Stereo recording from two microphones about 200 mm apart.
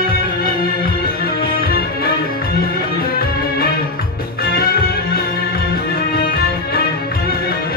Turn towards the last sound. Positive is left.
turn(degrees=50)  # may be behind; listen again after turning